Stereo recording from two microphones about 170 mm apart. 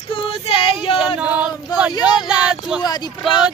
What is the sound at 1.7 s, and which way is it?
Speech, 25° left (ahead or behind).